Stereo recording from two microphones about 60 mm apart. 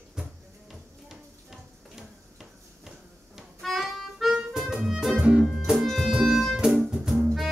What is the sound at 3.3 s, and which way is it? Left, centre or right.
Harmonica, centre.